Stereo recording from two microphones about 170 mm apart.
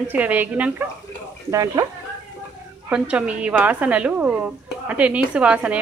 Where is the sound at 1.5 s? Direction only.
20° right (ahead or behind).